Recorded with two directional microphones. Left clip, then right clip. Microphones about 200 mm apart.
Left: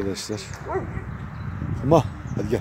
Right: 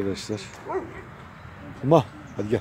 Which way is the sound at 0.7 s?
45° right (ahead or behind).